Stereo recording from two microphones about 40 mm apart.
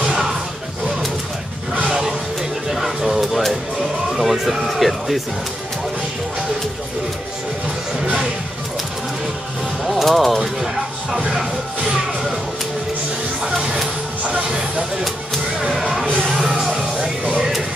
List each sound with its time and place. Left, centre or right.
0.0 s a sound: centre
1.7 s music: right
2.7 s a sound: centre
4.2 s speech: centre
9.8 s speech: centre
13.4 s music: centre
15.6 s music: centre